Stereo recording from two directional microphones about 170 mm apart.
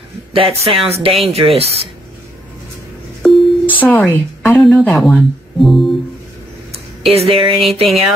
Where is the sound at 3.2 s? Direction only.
5° left (ahead or behind).